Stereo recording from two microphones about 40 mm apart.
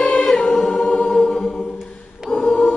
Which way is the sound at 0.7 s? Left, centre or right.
Left.